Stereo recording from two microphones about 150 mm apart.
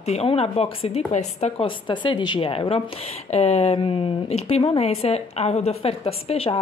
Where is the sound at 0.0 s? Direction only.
45° left (ahead or behind).